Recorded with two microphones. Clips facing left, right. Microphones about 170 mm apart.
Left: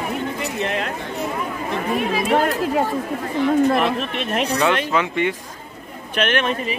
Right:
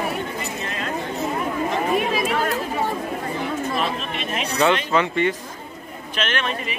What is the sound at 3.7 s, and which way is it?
Chatter, 60° left (ahead or behind).